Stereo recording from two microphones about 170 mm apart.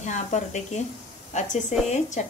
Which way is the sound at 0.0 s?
45° left (ahead or behind).